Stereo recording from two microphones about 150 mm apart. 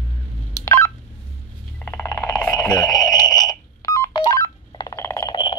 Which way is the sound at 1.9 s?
20° left (ahead or behind).